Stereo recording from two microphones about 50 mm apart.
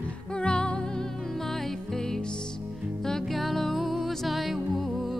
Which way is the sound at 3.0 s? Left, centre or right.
Centre.